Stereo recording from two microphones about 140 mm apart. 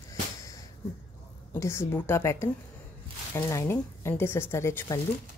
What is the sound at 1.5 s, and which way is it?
A woman's voice, 20° left (ahead or behind).